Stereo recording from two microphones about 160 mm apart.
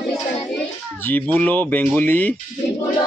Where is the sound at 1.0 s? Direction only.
10° left (ahead or behind).